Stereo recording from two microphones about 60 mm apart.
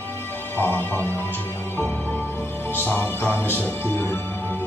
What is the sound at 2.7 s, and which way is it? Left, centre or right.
Music, left.